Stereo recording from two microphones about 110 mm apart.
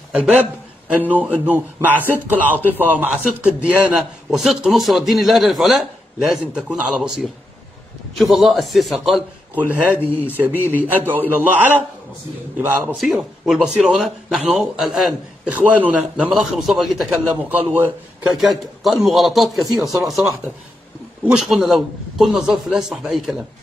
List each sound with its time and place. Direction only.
0.9 s a man's voice: 15° right (ahead or behind)
1.9 s speech: 15° left (ahead or behind)
2.2 s a man's voice: 15° right (ahead or behind)
4.4 s a man's voice: centre (ahead or behind)
8.2 s a man's voice: centre (ahead or behind)
9.9 s speech: 20° left (ahead or behind)
10.3 s a man's voice: 15° right (ahead or behind)
12.9 s a man's voice: centre (ahead or behind)
18.4 s a man's voice: centre (ahead or behind)